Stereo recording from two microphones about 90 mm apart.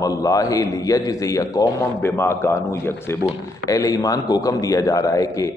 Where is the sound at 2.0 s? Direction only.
30° left (ahead or behind).